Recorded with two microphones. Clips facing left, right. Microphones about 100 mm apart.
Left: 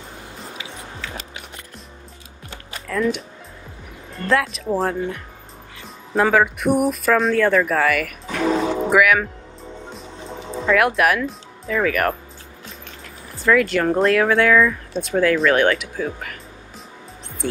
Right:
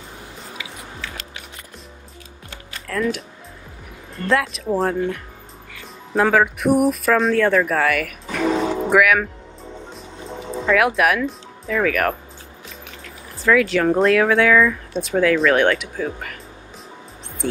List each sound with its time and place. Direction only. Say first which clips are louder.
2.9 s speech: left 1 dB; centre (ahead or behind)
13.4 s speech: right 1 dB; centre (ahead or behind)